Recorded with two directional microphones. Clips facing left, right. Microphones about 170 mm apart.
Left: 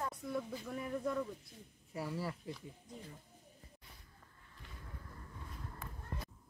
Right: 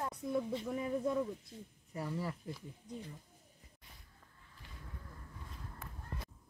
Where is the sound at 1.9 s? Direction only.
5° left (ahead or behind).